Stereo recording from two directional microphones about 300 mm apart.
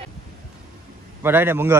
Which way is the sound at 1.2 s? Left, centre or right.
Centre.